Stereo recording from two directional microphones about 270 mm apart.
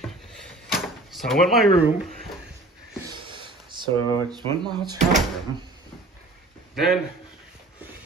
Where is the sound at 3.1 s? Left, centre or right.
Centre.